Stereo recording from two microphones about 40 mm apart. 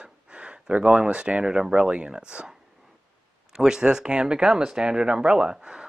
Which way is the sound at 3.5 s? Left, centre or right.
Centre.